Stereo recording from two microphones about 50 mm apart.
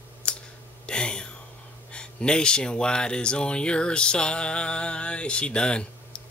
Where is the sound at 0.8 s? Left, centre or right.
Centre.